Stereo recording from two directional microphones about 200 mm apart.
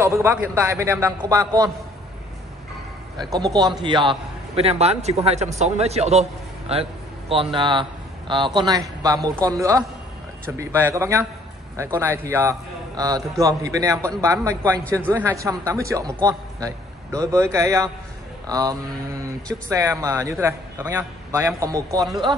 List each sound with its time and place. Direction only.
0.0 s a man's voice: 15° right (ahead or behind)
3.2 s a man's voice: 20° right (ahead or behind)
6.7 s a sound: 30° right (ahead or behind)
7.5 s a man's voice: 25° right (ahead or behind)
14.7 s speech: 5° left (ahead or behind)
15.1 s a man's voice: 10° right (ahead or behind)